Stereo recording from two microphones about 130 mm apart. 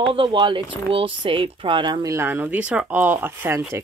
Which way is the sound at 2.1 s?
15° right (ahead or behind).